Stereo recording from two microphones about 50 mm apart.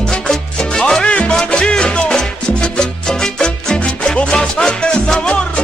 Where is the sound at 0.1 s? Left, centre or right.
Centre.